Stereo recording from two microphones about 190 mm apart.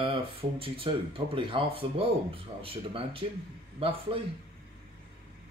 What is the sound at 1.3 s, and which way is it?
Speech, 25° right (ahead or behind).